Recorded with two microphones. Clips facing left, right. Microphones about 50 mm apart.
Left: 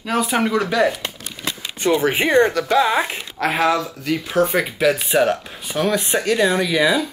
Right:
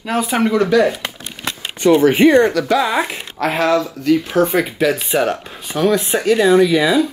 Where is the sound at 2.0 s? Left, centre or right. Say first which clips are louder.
Right 8 dB; centre.